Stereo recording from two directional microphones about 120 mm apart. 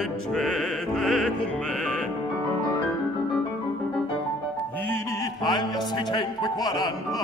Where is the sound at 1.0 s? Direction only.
5° left (ahead or behind).